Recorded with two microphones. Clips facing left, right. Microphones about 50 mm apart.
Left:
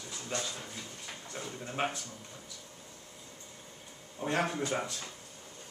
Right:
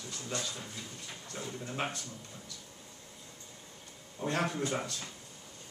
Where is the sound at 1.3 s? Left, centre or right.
Centre.